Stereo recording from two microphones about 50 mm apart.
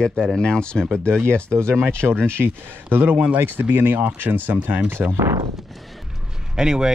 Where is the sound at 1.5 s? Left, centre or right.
Right.